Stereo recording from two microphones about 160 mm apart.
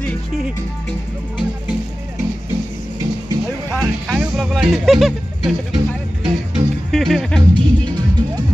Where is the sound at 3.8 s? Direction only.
Centre (ahead or behind).